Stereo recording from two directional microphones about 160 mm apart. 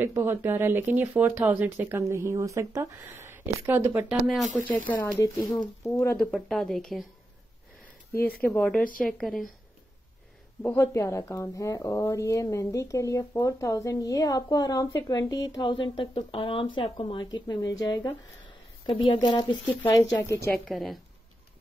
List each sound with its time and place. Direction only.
0.0 s speech: 15° right (ahead or behind)
4.8 s speech: 15° left (ahead or behind)
6.1 s speech: centre (ahead or behind)
8.4 s speech: 10° left (ahead or behind)
10.6 s a woman's voice: 15° left (ahead or behind)
20.6 s speech: centre (ahead or behind)